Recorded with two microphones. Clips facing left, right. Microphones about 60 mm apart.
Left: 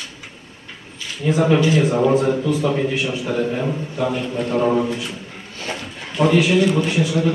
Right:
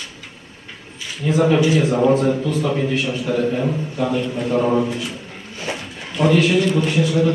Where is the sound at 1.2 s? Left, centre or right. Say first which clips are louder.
Even; centre.